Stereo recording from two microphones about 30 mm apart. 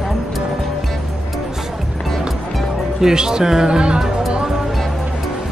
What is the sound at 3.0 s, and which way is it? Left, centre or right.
Speech, right.